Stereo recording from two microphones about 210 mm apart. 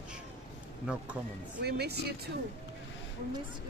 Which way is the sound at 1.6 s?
50° right (ahead or behind).